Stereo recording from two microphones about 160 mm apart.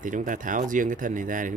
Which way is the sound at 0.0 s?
55° right (ahead or behind).